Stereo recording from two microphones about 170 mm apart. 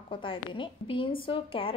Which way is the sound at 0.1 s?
30° left (ahead or behind).